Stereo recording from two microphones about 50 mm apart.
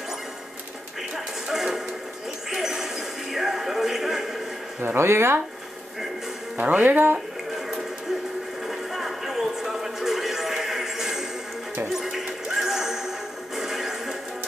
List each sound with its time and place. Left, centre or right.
1.1 s music: centre
4.8 s speech: right
6.5 s speech: right
8.6 s music: centre